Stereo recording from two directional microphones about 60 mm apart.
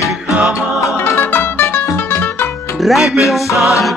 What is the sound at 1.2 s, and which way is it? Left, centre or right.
Music, left.